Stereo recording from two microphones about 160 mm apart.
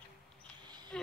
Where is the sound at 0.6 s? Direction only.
25° right (ahead or behind).